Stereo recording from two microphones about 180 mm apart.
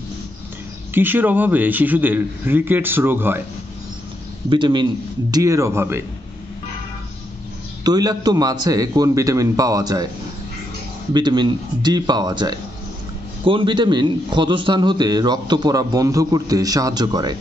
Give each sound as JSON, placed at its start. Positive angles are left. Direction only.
{"t": 0.9, "sound": "a man's voice", "side_deg": -10}
{"t": 4.5, "sound": "a man's voice", "side_deg": -25}
{"t": 7.8, "sound": "a man's voice", "side_deg": -20}
{"t": 11.1, "sound": "a man's voice", "side_deg": -25}